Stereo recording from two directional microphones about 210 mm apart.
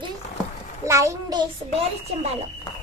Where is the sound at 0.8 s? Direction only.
15° right (ahead or behind).